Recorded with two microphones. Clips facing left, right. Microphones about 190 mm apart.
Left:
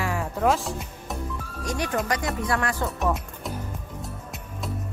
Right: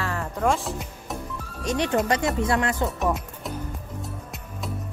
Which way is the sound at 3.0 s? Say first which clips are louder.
Right 1 dB; centre (ahead or behind).